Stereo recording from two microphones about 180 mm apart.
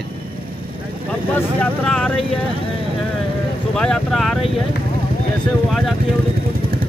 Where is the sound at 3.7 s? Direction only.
5° left (ahead or behind).